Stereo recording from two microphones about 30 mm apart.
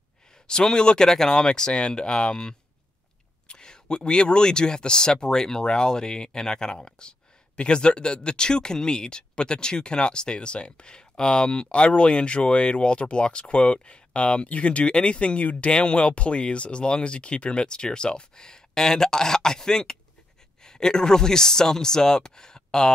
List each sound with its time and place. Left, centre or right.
0.5 s speech: left
14.5 s speech: left